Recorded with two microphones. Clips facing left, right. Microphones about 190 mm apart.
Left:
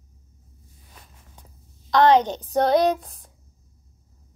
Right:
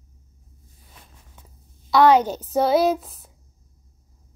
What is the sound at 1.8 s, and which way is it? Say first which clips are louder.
Speech: right 1 dB; 10° right (ahead or behind).